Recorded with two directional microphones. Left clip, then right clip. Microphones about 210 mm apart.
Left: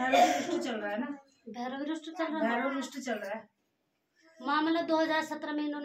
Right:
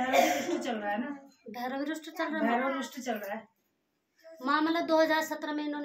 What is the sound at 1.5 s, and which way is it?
Speech, 30° right (ahead or behind).